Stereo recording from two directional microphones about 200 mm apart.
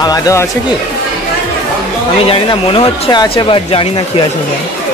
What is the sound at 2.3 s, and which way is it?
Speech, 25° left (ahead or behind).